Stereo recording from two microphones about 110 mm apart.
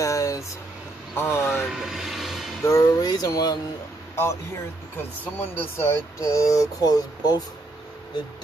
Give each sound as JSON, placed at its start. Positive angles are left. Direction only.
{"t": 0.0, "sound": "a sound", "side_deg": 30}
{"t": 1.1, "sound": "speech", "side_deg": 20}
{"t": 1.6, "sound": "speech", "side_deg": -5}
{"t": 2.6, "sound": "speech", "side_deg": 25}
{"t": 4.1, "sound": "speech", "side_deg": 25}
{"t": 5.4, "sound": "speech", "side_deg": 20}